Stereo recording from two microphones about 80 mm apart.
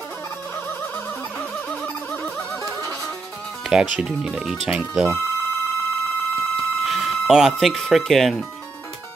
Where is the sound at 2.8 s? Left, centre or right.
Left.